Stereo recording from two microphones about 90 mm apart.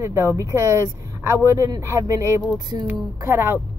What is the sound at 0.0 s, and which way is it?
A woman's voice, 30° right (ahead or behind).